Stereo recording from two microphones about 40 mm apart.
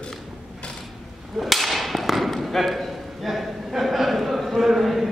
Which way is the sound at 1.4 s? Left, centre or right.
Centre.